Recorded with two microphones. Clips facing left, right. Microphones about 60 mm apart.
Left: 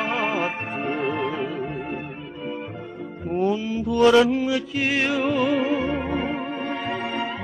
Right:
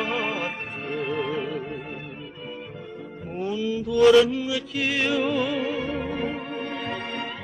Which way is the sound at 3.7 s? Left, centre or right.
Left.